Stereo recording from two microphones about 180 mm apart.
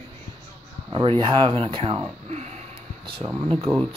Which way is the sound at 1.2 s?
30° right (ahead or behind).